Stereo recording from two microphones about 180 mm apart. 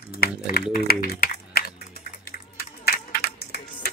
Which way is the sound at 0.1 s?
60° left (ahead or behind).